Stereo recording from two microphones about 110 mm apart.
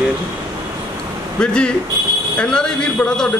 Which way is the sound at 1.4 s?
10° left (ahead or behind).